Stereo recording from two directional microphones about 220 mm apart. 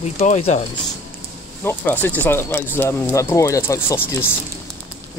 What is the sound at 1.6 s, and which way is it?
Speech, 10° left (ahead or behind).